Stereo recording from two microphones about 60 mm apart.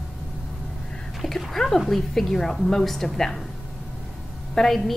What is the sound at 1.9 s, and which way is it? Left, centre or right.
A woman's voice, centre.